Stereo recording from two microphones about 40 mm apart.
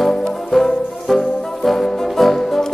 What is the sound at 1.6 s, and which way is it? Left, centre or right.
Music, centre.